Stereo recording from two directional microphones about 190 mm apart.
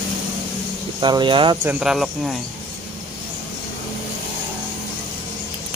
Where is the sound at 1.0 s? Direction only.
25° right (ahead or behind).